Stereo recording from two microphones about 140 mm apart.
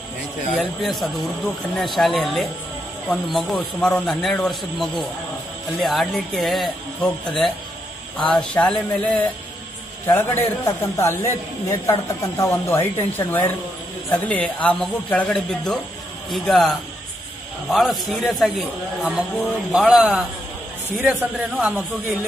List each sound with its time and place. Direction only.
0.8 s speech: centre (ahead or behind)
10.0 s a man's voice: 15° left (ahead or behind); by 21.8 s 5° right (ahead or behind)